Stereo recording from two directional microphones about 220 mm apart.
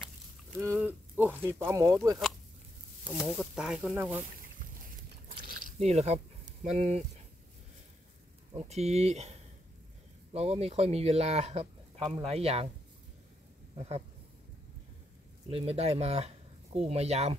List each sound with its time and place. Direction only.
0.6 s speech: 10° right (ahead or behind)
3.1 s speech: centre (ahead or behind)
5.5 s a sound: 35° right (ahead or behind)
8.5 s speech: 30° right (ahead or behind)
15.5 s speech: 30° right (ahead or behind)